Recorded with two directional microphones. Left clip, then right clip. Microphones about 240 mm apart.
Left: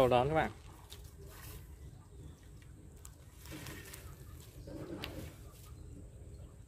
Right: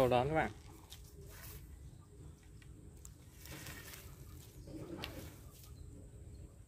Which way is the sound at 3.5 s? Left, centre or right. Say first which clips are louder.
Left 3 dB; right.